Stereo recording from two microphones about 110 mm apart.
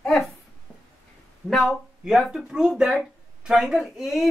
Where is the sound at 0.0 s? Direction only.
Centre (ahead or behind).